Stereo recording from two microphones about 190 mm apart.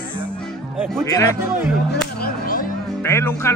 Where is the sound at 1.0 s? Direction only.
15° left (ahead or behind).